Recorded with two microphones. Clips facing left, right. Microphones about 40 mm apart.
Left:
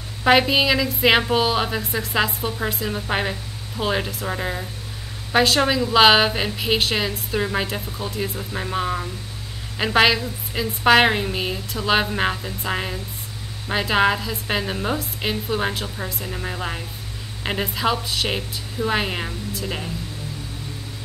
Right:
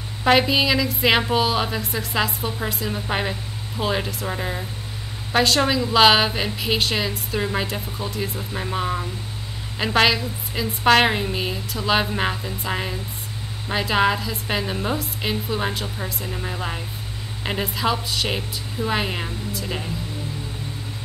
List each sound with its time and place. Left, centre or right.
0.2 s a woman's voice: centre